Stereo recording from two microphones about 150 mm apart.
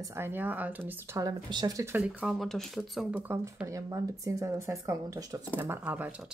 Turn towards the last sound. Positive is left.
turn(degrees=-10)  # may be behind; listen again after turning